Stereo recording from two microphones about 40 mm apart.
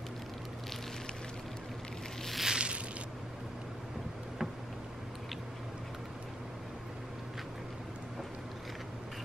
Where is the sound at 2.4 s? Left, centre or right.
Right.